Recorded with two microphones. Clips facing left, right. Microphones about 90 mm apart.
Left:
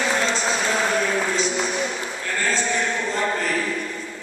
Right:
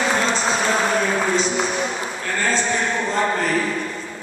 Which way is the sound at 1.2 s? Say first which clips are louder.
Right 3 dB; 35° right (ahead or behind).